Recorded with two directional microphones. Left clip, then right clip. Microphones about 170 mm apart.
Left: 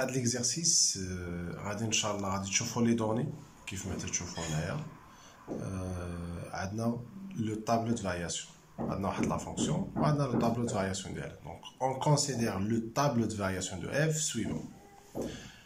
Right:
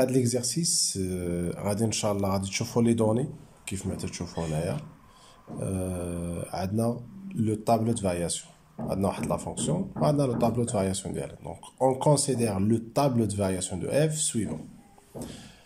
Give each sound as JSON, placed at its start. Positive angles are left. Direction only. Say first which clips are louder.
{"t": 0.0, "sound": "speech", "louder": "right 7 dB", "side_deg": -25}